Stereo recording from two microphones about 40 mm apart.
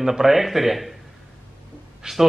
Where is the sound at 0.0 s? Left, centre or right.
Centre.